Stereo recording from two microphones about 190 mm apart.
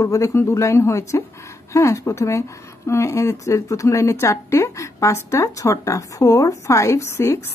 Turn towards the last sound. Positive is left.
turn(degrees=15)  # may be behind; listen again after turning